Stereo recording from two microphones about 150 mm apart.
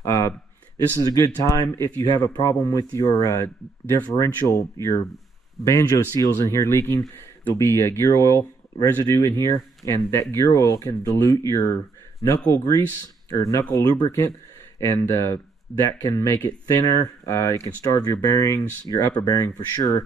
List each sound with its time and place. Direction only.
0.0 s a sound: 20° left (ahead or behind)
1.2 s speech: 20° left (ahead or behind)
12.5 s speech: 20° left (ahead or behind)